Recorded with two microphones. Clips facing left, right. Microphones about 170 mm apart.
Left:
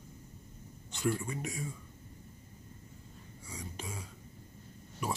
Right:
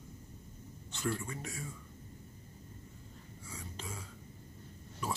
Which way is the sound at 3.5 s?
15° left (ahead or behind).